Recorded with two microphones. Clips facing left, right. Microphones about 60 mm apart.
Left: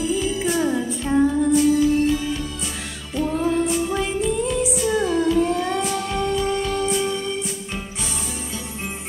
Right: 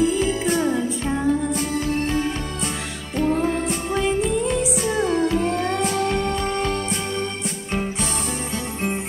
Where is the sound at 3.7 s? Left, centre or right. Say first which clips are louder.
Left 3 dB; right.